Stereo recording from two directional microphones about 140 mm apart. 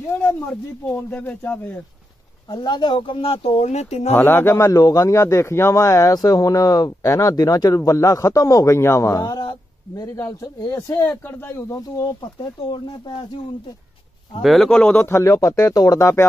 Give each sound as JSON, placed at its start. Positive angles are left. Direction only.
{"t": 0.2, "sound": "speech", "side_deg": 10}
{"t": 2.5, "sound": "speech", "side_deg": 30}
{"t": 4.1, "sound": "a man's voice", "side_deg": 15}
{"t": 12.7, "sound": "speech", "side_deg": 35}
{"t": 14.4, "sound": "a man's voice", "side_deg": 0}